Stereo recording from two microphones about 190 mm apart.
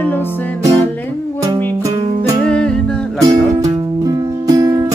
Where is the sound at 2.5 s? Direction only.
5° left (ahead or behind).